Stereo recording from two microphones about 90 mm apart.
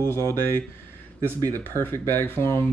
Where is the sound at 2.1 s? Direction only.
25° left (ahead or behind).